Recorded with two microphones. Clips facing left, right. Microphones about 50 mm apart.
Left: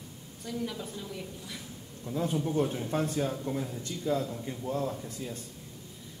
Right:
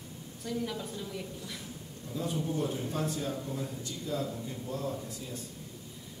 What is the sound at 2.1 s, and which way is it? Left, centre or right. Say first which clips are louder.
A man's voice: left 4 dB; left.